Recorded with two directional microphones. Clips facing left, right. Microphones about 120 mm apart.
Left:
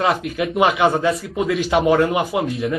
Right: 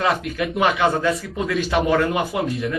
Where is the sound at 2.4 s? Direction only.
Centre (ahead or behind).